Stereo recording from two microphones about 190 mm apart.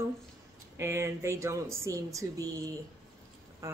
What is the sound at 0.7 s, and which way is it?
Speech, 15° right (ahead or behind).